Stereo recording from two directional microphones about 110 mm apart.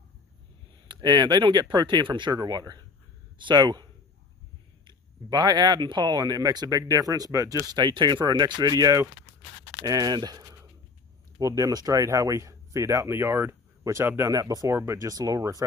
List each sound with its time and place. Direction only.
0.8 s a man's voice: 40° right (ahead or behind)